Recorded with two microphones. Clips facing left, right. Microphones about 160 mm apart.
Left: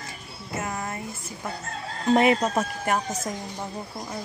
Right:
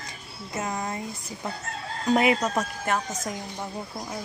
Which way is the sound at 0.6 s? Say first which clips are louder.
Right 3 dB; 15° right (ahead or behind).